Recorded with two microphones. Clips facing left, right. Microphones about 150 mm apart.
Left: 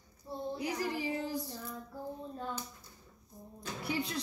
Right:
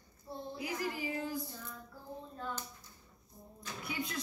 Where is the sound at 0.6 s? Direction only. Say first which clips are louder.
Left 2 dB; 35° left (ahead or behind).